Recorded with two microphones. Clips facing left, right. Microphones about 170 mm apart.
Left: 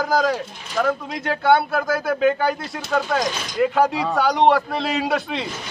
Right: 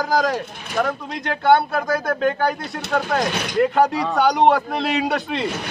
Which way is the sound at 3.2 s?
60° right (ahead or behind).